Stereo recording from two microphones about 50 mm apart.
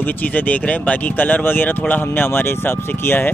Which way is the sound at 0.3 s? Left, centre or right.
Left.